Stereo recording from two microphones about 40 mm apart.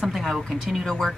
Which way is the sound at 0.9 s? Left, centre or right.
Centre.